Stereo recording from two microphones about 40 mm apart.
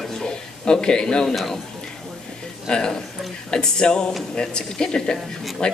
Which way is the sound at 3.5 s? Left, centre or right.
Centre.